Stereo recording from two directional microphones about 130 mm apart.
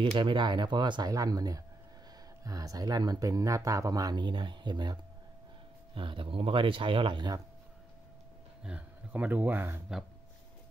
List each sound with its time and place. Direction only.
0.1 s speech: 40° right (ahead or behind)
5.9 s speech: 40° right (ahead or behind)
8.6 s speech: 10° right (ahead or behind)